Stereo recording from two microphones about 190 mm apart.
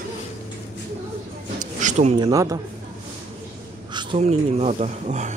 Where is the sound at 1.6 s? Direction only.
40° right (ahead or behind).